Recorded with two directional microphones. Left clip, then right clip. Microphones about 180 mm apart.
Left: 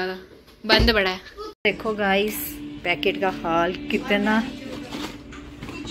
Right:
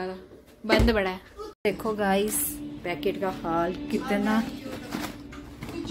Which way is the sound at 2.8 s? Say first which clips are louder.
Left 7 dB; centre (ahead or behind).